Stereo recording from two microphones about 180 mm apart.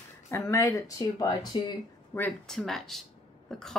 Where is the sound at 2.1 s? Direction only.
5° left (ahead or behind).